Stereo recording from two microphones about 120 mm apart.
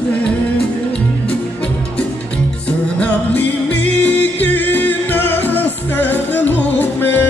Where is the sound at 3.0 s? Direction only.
10° left (ahead or behind).